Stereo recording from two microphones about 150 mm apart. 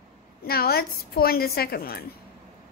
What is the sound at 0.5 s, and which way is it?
A woman's voice, 90° left.